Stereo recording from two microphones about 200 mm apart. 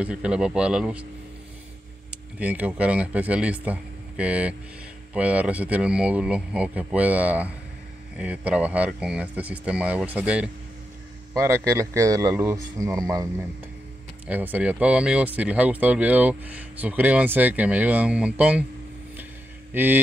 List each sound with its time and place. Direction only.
0.0 s speech: 5° right (ahead or behind)
2.3 s speech: 5° right (ahead or behind)
19.7 s speech: 10° right (ahead or behind)